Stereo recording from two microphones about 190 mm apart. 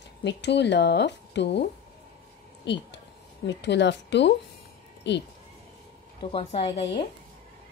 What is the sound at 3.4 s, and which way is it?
A woman's voice, 65° left (ahead or behind).